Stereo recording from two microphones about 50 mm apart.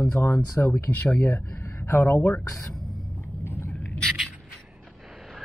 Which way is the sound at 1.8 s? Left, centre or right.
Left.